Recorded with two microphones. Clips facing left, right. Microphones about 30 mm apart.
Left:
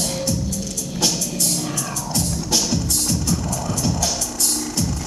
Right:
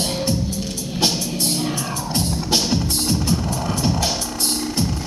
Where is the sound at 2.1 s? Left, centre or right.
Right.